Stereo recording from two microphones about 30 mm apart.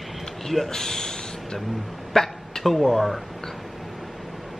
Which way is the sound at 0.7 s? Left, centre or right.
Centre.